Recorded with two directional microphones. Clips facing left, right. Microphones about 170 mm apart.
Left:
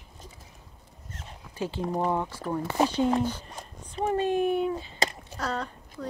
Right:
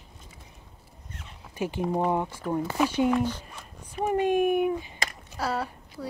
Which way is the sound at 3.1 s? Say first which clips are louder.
Right 1 dB; 40° left (ahead or behind).